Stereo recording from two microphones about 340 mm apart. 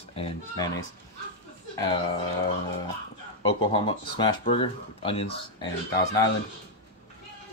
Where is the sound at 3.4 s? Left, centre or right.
Centre.